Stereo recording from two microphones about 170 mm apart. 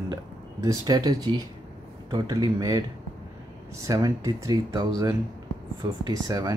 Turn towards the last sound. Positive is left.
turn(degrees=-20)  # may be behind; listen again after turning